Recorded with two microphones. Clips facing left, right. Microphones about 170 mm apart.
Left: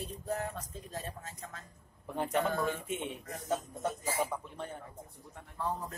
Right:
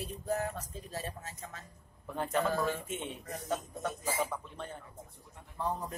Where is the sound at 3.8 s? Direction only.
10° left (ahead or behind).